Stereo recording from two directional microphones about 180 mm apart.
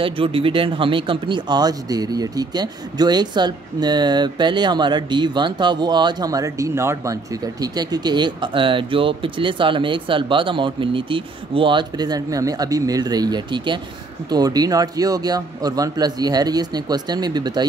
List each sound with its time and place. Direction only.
0.0 s speech: 30° right (ahead or behind)